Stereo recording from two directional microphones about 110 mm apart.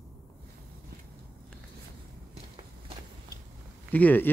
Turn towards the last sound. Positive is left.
turn(degrees=15)  # may be behind; listen again after turning